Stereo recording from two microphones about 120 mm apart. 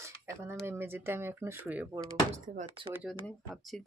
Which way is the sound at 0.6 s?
20° right (ahead or behind).